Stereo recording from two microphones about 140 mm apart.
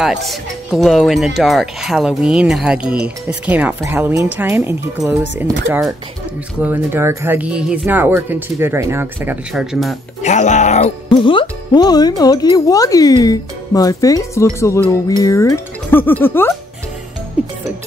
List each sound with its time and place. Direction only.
0.0 s speech: centre (ahead or behind)
10.2 s speech: 55° left (ahead or behind)
11.1 s speech: 35° left (ahead or behind); by 16.5 s 15° left (ahead or behind)